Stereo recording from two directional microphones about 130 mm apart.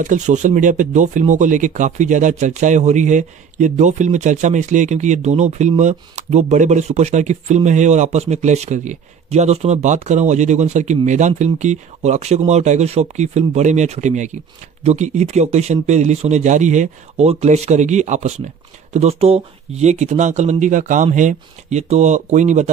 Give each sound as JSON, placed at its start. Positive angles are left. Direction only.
{"t": 0.0, "sound": "speech", "side_deg": -75}
{"t": 17.3, "sound": "speech", "side_deg": -55}
{"t": 18.9, "sound": "speech", "side_deg": -50}